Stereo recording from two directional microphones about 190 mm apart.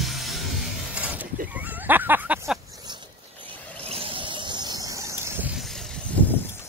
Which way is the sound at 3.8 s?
30° right (ahead or behind).